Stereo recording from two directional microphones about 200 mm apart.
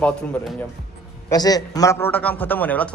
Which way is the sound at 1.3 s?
20° left (ahead or behind).